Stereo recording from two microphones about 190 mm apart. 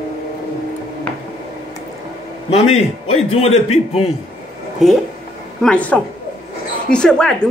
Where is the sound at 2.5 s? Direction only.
35° left (ahead or behind).